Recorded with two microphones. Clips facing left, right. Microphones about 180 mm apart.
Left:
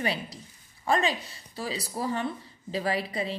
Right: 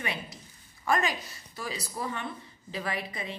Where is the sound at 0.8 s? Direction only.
30° left (ahead or behind).